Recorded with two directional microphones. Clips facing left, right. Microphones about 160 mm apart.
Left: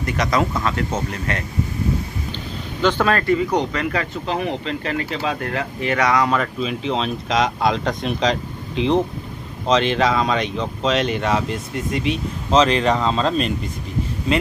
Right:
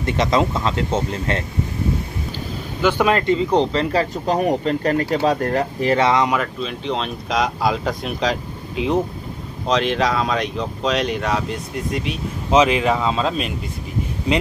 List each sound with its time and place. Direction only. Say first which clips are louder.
0.0 s speech: right 2 dB; 25° right (ahead or behind)
2.8 s speech: right 1 dB; 10° right (ahead or behind)
6.3 s speech: left 1 dB; centre (ahead or behind)